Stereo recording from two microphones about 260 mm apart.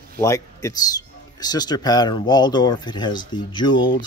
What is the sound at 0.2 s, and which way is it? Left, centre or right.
Speech, centre.